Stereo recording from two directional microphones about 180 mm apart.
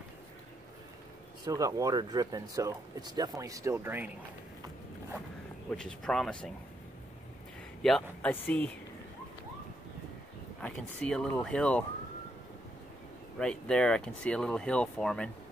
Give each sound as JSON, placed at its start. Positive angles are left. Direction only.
{"t": 1.4, "sound": "speech", "side_deg": -20}
{"t": 5.7, "sound": "speech", "side_deg": 5}
{"t": 7.8, "sound": "speech", "side_deg": 5}
{"t": 10.6, "sound": "speech", "side_deg": 5}
{"t": 13.4, "sound": "speech", "side_deg": 5}